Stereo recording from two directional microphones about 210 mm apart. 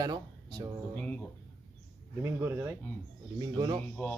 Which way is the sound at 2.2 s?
10° right (ahead or behind).